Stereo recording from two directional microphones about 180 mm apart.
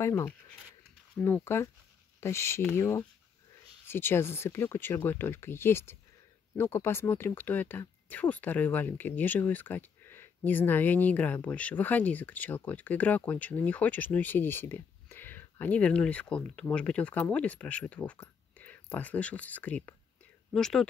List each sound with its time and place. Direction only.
0.0 s speech: 15° left (ahead or behind)